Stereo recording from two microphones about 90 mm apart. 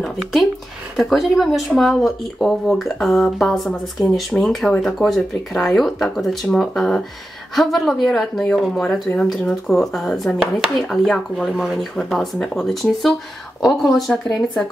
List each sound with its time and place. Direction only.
0.0 s speech: centre (ahead or behind)